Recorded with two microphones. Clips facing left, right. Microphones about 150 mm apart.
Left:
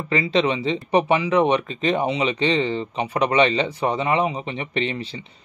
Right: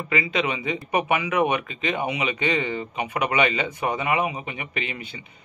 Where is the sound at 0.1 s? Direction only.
35° left (ahead or behind).